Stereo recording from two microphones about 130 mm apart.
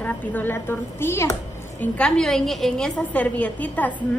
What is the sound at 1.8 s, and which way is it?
A woman's voice, 5° left (ahead or behind).